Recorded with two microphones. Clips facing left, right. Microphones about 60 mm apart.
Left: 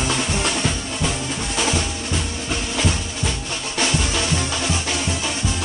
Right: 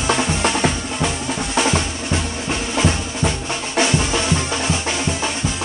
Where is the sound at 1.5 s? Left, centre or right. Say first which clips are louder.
Right 4 dB; right.